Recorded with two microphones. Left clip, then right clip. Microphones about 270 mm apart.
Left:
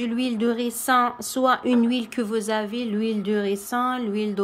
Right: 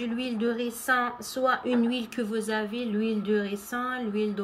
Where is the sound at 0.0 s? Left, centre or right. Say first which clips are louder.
Left 5 dB; centre.